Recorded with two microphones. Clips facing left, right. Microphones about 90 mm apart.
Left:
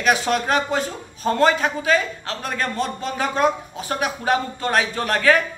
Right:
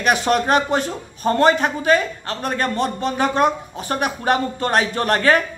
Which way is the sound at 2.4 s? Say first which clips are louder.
Right 4 dB; 50° right (ahead or behind).